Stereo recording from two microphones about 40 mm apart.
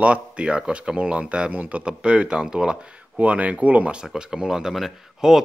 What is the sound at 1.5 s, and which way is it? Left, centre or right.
Speech, right.